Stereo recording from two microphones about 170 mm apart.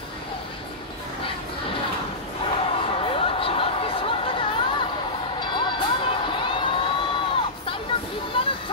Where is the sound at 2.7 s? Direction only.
30° left (ahead or behind).